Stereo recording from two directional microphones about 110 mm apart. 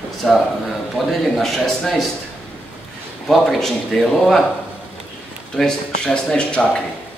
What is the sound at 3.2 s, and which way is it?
Speech, centre (ahead or behind).